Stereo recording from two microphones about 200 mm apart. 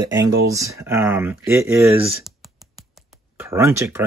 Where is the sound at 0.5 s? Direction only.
15° right (ahead or behind).